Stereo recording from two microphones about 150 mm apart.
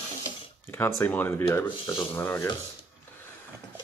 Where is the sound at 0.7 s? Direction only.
15° left (ahead or behind).